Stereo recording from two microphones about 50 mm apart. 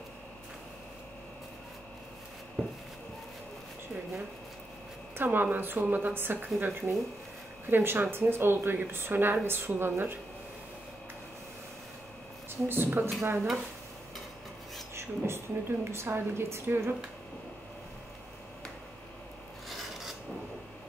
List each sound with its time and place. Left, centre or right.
2.6 s a sound: centre
5.1 s speech: right
12.6 s speech: right
15.0 s a woman's voice: right
16.6 s speech: right
19.7 s filing: centre